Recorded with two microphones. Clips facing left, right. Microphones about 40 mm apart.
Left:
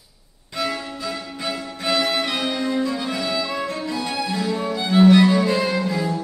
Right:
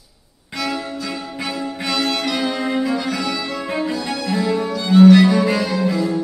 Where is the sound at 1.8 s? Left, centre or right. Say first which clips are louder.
Left 1 dB; centre.